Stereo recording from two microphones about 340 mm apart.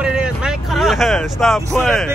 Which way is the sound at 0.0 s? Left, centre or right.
Centre.